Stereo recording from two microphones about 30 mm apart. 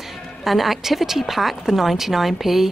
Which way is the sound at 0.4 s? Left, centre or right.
Centre.